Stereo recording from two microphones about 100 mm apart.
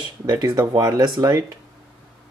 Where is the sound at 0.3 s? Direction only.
45° right (ahead or behind).